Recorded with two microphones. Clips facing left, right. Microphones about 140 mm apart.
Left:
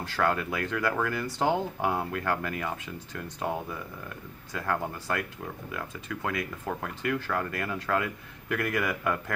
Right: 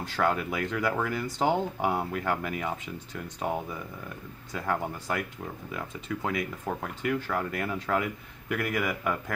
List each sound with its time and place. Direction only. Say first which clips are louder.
0.0 s speech: even; 15° right (ahead or behind)
4.6 s speech: even; 15° right (ahead or behind)